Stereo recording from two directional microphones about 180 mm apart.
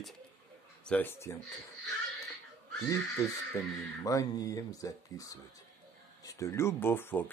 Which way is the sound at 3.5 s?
20° left (ahead or behind).